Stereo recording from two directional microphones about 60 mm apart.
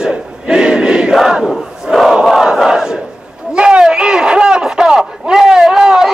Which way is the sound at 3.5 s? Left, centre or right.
Centre.